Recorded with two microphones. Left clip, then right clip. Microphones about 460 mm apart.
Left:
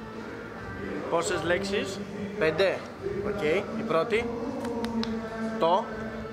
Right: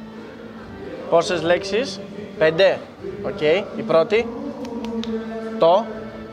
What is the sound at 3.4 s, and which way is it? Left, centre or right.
Speech, right.